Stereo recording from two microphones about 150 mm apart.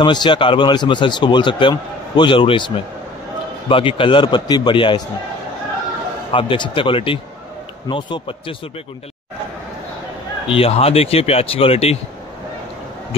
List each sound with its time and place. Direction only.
0.0 s a man's voice: 30° left (ahead or behind)
6.3 s a man's voice: 35° left (ahead or behind)
10.5 s a man's voice: 40° left (ahead or behind)